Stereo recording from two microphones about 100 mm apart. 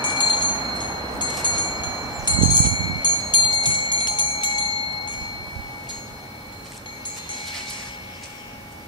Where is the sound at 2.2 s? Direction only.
50° left (ahead or behind).